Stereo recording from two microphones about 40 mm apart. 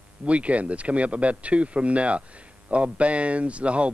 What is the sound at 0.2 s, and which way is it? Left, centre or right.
Speech, right.